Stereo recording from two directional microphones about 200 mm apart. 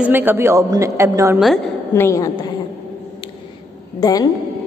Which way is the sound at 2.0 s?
15° left (ahead or behind).